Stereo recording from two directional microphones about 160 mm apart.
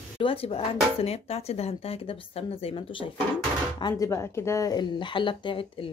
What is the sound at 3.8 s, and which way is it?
Speech, 20° left (ahead or behind).